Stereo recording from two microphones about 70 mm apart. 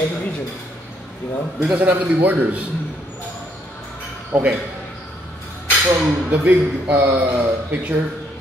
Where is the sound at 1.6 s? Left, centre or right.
Right.